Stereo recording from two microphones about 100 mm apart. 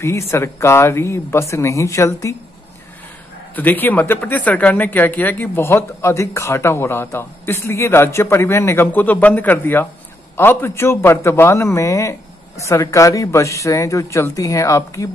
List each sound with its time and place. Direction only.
0.3 s a woman's voice: 25° left (ahead or behind)
3.5 s a woman's voice: 15° left (ahead or behind); by 15.0 s 30° left (ahead or behind)